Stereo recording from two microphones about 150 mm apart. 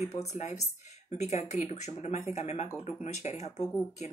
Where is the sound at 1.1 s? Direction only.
50° left (ahead or behind).